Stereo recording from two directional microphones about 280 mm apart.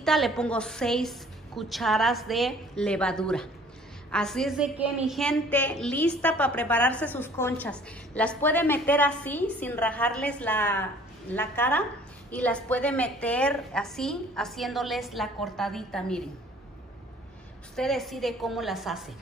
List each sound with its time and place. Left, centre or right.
0.0 s a woman's voice: centre
17.7 s a woman's voice: centre